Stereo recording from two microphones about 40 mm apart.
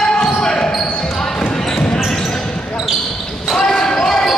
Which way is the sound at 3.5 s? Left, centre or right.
Centre.